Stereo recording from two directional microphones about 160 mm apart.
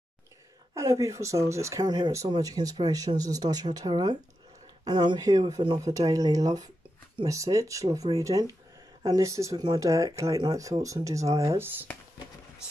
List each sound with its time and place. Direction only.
0.7 s speech: 20° right (ahead or behind)